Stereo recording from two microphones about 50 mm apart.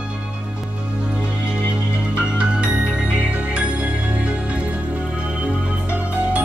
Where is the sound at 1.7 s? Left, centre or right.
Right.